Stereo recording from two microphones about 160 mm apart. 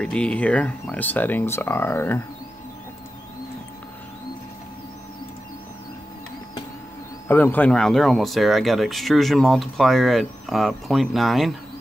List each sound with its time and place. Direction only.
0.0 s speech: 5° left (ahead or behind)
7.2 s speech: 10° left (ahead or behind)